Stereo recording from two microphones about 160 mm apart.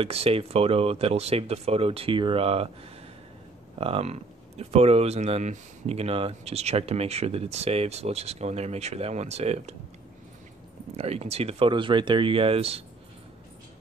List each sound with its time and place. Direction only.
0.0 s speech: 35° right (ahead or behind)
3.7 s speech: 40° right (ahead or behind)
11.0 s speech: 40° right (ahead or behind)